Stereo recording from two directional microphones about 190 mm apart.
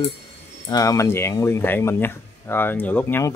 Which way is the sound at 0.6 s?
20° left (ahead or behind).